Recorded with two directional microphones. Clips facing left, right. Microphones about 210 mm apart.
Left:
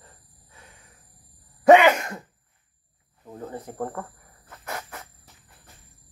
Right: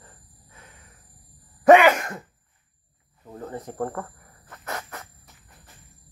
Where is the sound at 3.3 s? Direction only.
10° left (ahead or behind).